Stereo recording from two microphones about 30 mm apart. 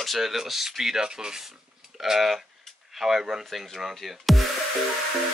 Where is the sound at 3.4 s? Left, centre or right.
Centre.